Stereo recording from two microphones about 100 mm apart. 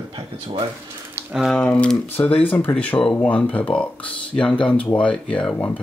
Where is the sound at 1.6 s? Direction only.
10° left (ahead or behind).